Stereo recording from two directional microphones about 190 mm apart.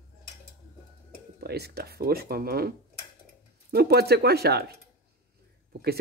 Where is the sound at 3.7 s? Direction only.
55° right (ahead or behind).